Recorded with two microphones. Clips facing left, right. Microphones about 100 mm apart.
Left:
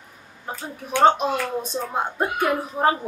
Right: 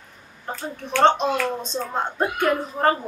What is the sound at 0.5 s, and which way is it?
A woman's voice, 10° left (ahead or behind).